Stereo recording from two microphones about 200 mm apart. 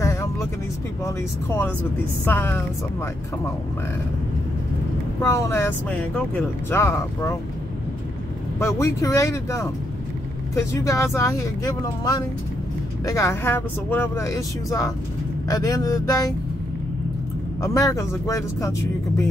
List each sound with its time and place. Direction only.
0.0 s vehicle: 15° left (ahead or behind)
1.0 s speech: 15° left (ahead or behind)
5.2 s speech: 15° left (ahead or behind)
8.5 s speech: 15° left (ahead or behind)
17.6 s speech: 15° left (ahead or behind)